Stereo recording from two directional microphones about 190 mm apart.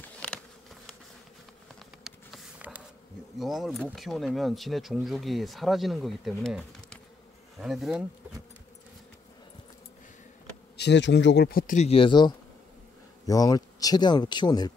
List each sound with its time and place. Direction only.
0.0 s insect: 5° left (ahead or behind)
2.0 s a sound: 5° right (ahead or behind)
3.3 s speech: centre (ahead or behind)
10.8 s speech: 65° left (ahead or behind); by 14.7 s 20° left (ahead or behind)